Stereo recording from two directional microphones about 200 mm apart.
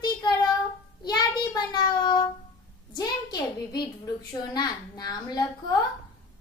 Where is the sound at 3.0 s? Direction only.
20° left (ahead or behind).